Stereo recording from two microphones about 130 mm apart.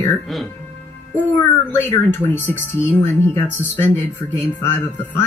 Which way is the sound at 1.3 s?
20° left (ahead or behind).